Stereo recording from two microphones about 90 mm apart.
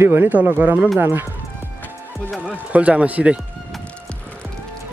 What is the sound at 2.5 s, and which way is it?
Speech, 15° right (ahead or behind).